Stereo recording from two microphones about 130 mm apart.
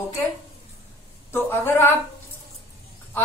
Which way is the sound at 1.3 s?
15° left (ahead or behind).